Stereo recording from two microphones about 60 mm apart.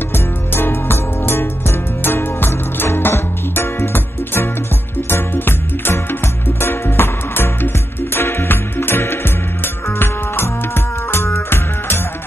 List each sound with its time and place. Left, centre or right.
0.1 s music: left